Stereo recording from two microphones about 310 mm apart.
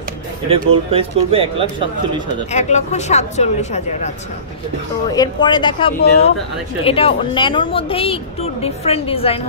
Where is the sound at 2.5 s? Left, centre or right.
Left.